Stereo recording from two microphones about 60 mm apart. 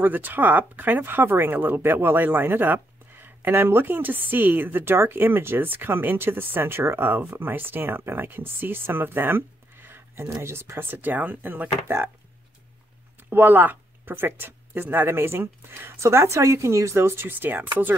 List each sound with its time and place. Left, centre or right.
0.0 s speech: right
13.2 s speech: right
16.0 s speech: right